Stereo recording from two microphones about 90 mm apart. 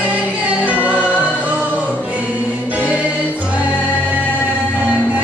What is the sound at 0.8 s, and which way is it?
Music, 15° right (ahead or behind).